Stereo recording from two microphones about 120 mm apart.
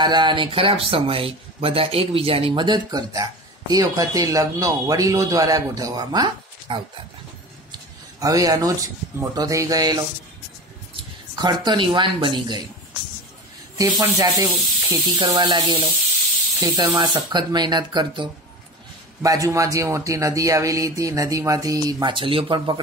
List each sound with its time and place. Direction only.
0.0 s speech: 40° right (ahead or behind)
11.3 s speech: 35° right (ahead or behind)
13.7 s speech: 30° right (ahead or behind)
22.1 s speech: 45° right (ahead or behind)